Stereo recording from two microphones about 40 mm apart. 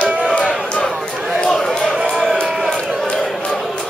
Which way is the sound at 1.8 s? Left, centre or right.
Centre.